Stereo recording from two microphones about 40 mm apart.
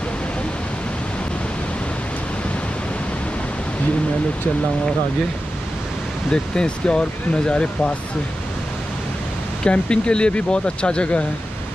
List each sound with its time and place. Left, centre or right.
6.3 s speech: left
9.7 s speech: left